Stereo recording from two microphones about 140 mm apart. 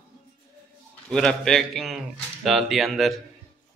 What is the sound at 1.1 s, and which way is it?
Speech, 5° left (ahead or behind).